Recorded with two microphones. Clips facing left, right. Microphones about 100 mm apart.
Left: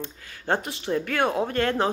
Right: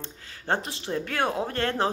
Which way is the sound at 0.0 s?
25° right (ahead or behind).